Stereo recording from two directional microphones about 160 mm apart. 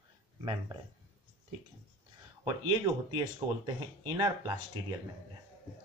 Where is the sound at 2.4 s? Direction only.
20° right (ahead or behind).